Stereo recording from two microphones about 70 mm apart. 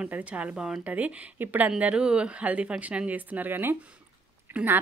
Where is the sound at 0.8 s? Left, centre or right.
Right.